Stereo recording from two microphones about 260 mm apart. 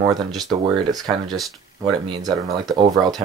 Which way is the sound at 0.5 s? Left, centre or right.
Centre.